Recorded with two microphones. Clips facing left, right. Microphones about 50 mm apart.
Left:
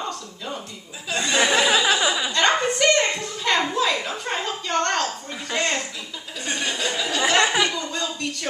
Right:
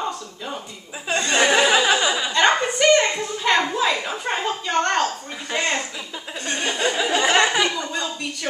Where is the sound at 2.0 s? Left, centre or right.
Centre.